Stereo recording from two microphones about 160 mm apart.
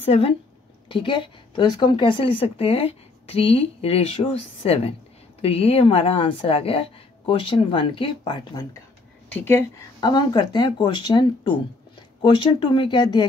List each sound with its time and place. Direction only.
0.0 s a woman's voice: 40° left (ahead or behind)
9.3 s speech: 15° left (ahead or behind)
10.0 s speech: 25° left (ahead or behind)